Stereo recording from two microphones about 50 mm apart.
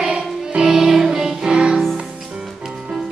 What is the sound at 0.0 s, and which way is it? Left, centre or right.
Music, centre.